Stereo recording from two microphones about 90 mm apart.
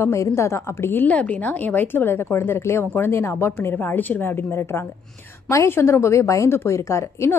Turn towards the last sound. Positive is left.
turn(degrees=30)  # may be behind; listen again after turning